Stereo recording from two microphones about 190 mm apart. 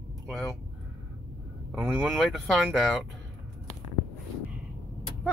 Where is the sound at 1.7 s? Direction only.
5° right (ahead or behind).